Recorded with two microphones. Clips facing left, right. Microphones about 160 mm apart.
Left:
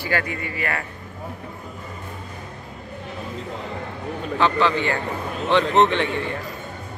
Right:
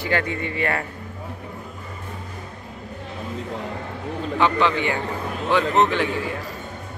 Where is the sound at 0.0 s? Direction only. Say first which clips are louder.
Right 2 dB; 25° right (ahead or behind).